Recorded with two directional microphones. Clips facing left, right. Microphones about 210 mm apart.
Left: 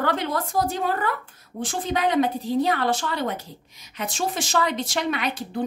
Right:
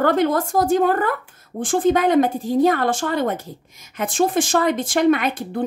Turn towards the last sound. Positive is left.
turn(degrees=-50)  # may be behind; listen again after turning